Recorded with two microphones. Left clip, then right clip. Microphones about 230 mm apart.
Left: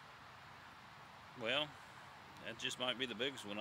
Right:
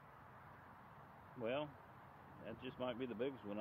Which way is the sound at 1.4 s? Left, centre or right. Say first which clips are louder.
Left 4 dB; centre.